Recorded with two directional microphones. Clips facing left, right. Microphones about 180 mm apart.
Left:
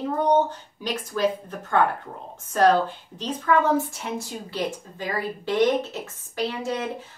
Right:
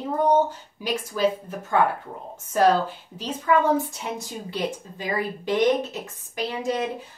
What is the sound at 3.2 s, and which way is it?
Speech, 10° right (ahead or behind).